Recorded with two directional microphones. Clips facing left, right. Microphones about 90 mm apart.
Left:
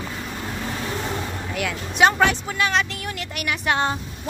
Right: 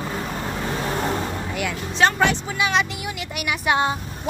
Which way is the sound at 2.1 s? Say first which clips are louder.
Left 1 dB; 5° right (ahead or behind).